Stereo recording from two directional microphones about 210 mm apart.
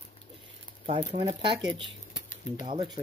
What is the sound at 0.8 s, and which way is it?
Speech, 25° right (ahead or behind).